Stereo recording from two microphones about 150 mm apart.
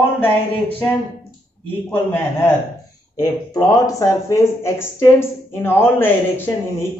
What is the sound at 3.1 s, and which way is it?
Speech, 25° left (ahead or behind).